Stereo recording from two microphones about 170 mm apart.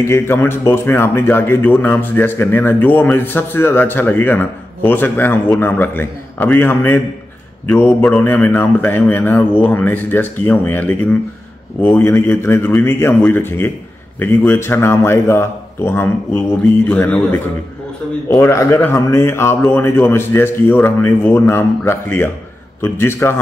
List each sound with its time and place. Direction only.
0.0 s a man's voice: 15° left (ahead or behind)